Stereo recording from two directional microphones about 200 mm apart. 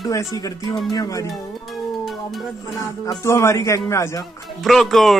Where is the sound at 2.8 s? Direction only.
15° left (ahead or behind).